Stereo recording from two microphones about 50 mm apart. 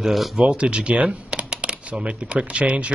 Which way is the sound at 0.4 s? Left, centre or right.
Right.